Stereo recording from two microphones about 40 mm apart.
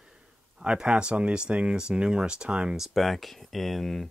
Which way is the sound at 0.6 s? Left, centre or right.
Right.